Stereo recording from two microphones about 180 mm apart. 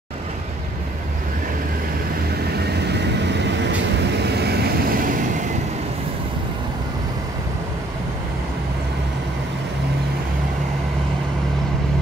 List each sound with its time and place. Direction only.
2.9 s vehicle: 70° right (ahead or behind); by 5.5 s 50° right (ahead or behind)